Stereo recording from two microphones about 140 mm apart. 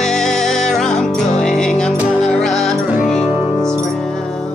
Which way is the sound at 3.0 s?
55° left (ahead or behind).